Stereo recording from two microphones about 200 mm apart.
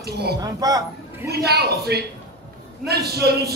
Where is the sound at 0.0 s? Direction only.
55° right (ahead or behind).